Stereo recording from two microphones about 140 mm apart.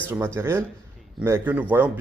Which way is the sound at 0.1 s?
20° right (ahead or behind).